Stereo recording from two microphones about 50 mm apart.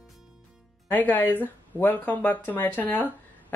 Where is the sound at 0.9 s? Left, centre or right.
Left.